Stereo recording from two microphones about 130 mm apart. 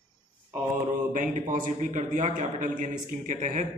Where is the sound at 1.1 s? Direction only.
85° right; by 3.7 s 70° right (ahead or behind).